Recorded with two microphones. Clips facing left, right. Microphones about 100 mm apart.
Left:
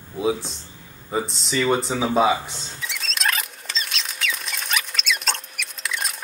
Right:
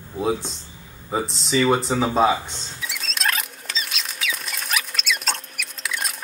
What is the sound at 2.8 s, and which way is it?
Rodents, centre (ahead or behind).